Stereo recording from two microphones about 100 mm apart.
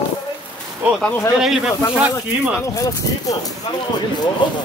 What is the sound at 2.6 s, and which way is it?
Speech, 35° left (ahead or behind).